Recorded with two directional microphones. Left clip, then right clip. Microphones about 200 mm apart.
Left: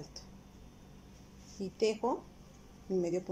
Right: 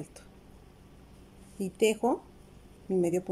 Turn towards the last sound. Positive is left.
turn(degrees=-15)  # may be behind; listen again after turning